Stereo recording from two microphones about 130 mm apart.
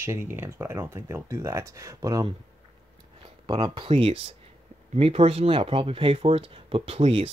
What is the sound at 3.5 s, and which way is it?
Speech, 40° right (ahead or behind).